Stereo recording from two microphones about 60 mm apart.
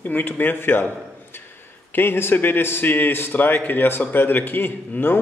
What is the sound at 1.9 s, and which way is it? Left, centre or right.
A man's voice, left.